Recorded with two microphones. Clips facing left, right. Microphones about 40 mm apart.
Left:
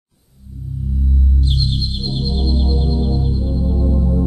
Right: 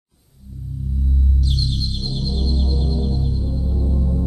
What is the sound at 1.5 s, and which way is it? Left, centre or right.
Music, left.